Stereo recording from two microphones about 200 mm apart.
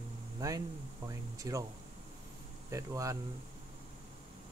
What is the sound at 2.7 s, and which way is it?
Speech, 15° right (ahead or behind).